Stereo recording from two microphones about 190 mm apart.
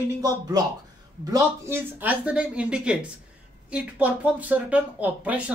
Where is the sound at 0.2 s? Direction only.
20° right (ahead or behind).